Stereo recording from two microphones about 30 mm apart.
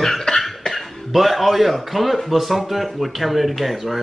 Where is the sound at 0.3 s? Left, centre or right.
Left.